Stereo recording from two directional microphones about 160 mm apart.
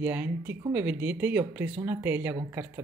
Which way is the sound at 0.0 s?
10° right (ahead or behind).